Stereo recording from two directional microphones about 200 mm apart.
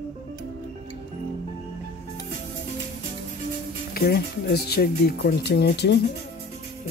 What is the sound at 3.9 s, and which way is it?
Speech, 50° left (ahead or behind).